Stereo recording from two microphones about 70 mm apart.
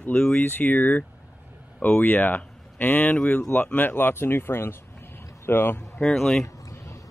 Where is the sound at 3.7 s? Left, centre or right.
Left.